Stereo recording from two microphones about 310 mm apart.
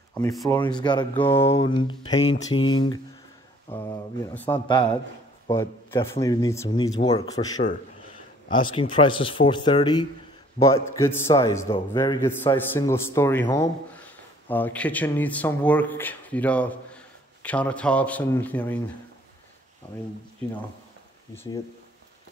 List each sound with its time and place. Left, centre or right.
0.1 s a man's voice: centre
3.6 s a man's voice: centre
19.8 s speech: centre